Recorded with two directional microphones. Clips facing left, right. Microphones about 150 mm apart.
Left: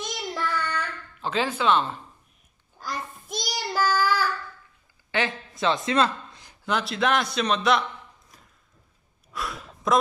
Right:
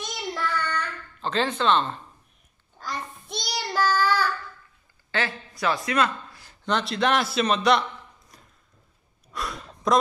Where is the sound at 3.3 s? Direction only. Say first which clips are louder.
Even; 10° left (ahead or behind).